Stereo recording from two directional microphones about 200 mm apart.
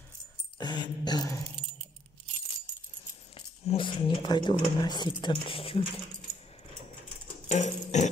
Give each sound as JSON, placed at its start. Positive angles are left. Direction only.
{"t": 0.6, "sound": "speech", "side_deg": 20}
{"t": 3.3, "sound": "a sound", "side_deg": 25}
{"t": 4.7, "sound": "speech", "side_deg": 20}
{"t": 7.4, "sound": "music", "side_deg": 35}